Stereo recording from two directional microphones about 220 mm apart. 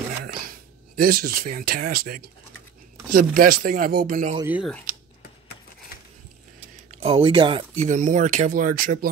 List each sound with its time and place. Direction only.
0.2 s a sound: 40° right (ahead or behind)
3.1 s speech: 40° right (ahead or behind)
4.4 s speech: 5° right (ahead or behind)
7.0 s speech: 25° right (ahead or behind); by 9.1 s 40° right (ahead or behind)